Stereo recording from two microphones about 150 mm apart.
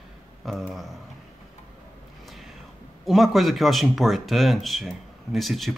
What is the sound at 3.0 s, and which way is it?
Speech, centre (ahead or behind).